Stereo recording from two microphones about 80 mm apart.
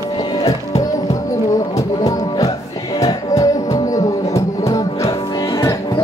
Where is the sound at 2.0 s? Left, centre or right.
Left.